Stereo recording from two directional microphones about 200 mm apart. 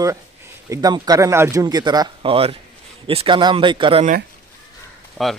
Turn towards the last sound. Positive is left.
turn(degrees=5)  # may be behind; listen again after turning